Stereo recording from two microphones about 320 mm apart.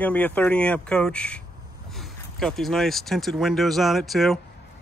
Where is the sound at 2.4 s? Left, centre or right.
Centre.